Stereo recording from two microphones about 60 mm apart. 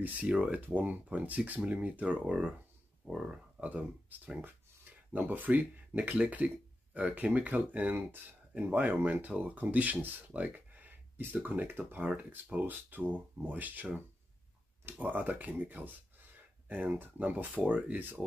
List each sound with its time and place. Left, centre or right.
0.0 s speech: right
4.1 s speech: right